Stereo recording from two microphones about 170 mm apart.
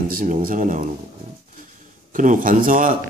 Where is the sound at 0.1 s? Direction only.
55° right (ahead or behind).